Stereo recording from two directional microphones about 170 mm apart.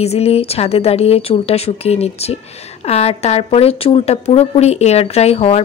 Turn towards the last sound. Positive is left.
turn(degrees=40)  # may be behind; listen again after turning